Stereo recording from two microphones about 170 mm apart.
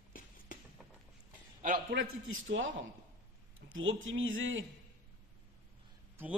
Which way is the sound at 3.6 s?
90° right.